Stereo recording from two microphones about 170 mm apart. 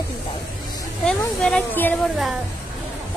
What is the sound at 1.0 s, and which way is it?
Speech, 5° left (ahead or behind).